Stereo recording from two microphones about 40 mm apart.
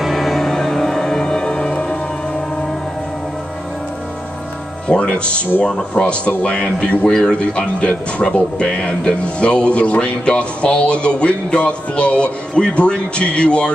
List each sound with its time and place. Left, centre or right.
0.0 s music: centre; by 2.0 s left
4.8 s speech: left